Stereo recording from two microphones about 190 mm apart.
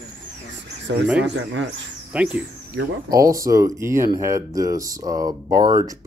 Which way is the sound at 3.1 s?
15° right (ahead or behind).